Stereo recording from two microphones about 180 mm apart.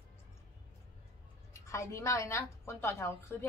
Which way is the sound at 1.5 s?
15° left (ahead or behind).